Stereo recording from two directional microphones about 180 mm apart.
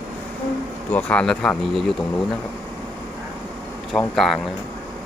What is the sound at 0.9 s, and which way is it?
Speech, 5° left (ahead or behind).